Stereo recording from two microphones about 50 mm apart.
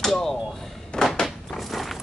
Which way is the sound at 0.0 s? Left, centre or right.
Centre.